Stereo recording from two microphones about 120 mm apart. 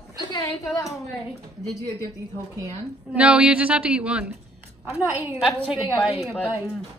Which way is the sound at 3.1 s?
10° right (ahead or behind).